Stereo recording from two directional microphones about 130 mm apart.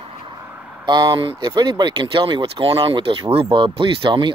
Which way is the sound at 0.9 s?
35° right (ahead or behind).